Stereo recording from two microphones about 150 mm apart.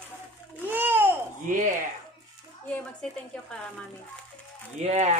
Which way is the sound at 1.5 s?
60° right (ahead or behind).